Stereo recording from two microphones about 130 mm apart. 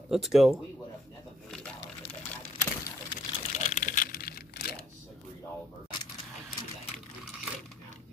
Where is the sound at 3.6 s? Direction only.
90° left.